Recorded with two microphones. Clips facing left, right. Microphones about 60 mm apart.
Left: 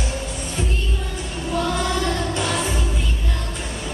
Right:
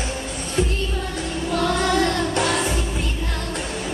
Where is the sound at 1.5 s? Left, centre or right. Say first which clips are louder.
Right 2 dB; right.